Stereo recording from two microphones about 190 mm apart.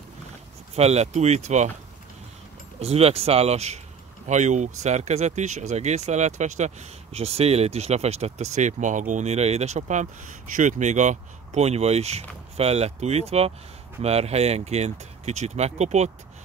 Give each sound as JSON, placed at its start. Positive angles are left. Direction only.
{"t": 0.7, "sound": "speech", "side_deg": -35}
{"t": 2.8, "sound": "speech", "side_deg": -30}